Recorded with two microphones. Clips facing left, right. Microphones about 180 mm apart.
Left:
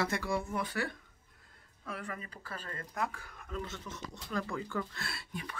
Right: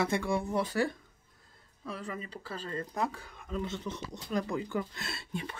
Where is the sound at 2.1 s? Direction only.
20° right (ahead or behind).